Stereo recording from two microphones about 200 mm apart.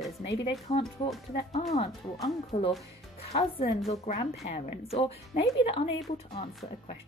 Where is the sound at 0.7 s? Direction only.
30° left (ahead or behind).